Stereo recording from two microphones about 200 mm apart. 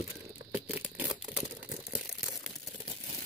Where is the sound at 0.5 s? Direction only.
10° right (ahead or behind).